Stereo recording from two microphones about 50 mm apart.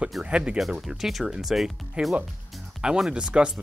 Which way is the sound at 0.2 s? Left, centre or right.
Right.